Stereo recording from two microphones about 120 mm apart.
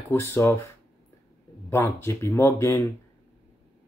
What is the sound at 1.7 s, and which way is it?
Speech, 20° left (ahead or behind).